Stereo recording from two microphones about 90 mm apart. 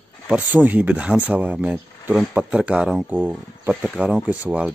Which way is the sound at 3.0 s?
20° right (ahead or behind).